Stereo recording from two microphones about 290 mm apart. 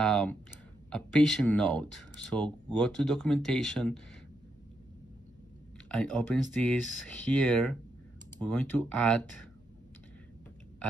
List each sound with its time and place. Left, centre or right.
0.0 s speech: centre
5.9 s speech: centre